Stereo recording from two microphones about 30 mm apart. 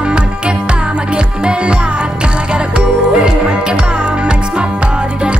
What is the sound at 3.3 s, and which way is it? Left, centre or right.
Music, right.